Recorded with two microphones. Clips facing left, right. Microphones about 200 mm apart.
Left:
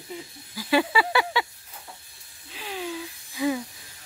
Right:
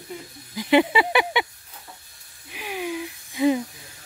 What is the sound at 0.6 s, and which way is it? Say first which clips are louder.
Speech: right 4 dB; 20° right (ahead or behind).